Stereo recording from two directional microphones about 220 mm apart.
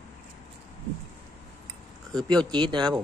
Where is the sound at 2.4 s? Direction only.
20° right (ahead or behind).